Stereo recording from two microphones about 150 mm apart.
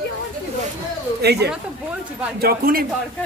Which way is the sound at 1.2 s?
90° right.